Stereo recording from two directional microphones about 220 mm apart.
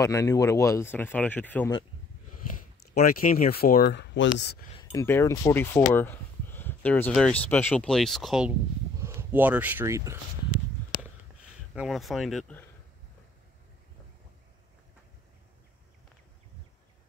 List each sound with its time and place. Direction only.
0.0 s speech: 15° left (ahead or behind)
2.4 s speech: 40° left (ahead or behind)
4.7 s speech: 10° left (ahead or behind); by 10.1 s 15° right (ahead or behind)
11.7 s speech: centre (ahead or behind)